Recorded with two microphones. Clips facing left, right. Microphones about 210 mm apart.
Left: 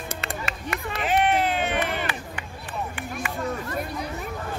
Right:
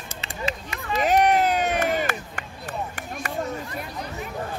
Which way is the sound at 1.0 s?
40° right (ahead or behind).